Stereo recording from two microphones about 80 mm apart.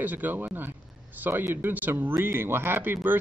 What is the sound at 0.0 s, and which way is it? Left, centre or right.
Speech, right.